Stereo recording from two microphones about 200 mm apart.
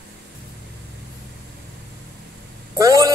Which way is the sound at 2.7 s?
15° right (ahead or behind).